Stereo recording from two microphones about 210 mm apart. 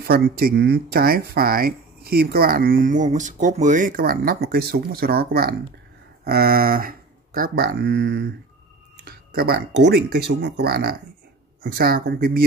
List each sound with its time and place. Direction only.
0.0 s speech: 45° right (ahead or behind)